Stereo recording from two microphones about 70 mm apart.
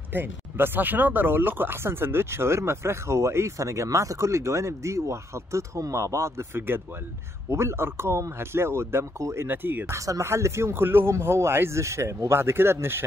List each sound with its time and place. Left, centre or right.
0.1 s speech: right
9.5 s speech: right
9.9 s speech: right